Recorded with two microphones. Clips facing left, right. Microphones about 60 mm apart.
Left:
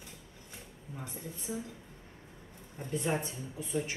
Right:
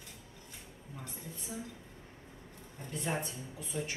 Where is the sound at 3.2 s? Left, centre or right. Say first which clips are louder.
Left 2 dB; left.